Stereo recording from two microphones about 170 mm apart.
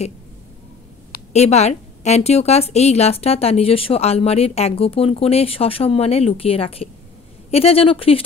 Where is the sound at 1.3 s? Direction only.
40° left (ahead or behind).